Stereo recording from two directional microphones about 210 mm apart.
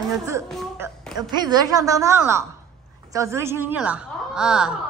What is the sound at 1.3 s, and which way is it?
A woman's voice, 20° right (ahead or behind).